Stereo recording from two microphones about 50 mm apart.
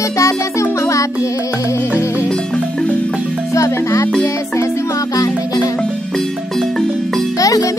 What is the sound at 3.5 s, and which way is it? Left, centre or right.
Music, left.